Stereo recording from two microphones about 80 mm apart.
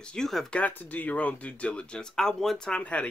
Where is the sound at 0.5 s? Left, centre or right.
Centre.